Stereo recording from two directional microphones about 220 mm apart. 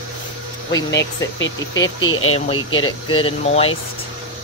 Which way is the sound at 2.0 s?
70° left (ahead or behind).